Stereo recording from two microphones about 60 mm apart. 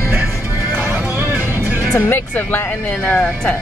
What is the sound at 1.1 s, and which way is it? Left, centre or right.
Music, right.